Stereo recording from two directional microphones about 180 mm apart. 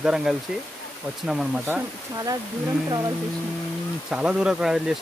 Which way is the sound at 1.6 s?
15° right (ahead or behind).